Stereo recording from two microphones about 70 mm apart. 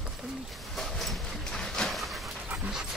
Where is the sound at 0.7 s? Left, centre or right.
Centre.